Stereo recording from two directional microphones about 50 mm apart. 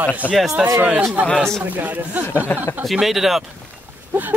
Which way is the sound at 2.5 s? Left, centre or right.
Left.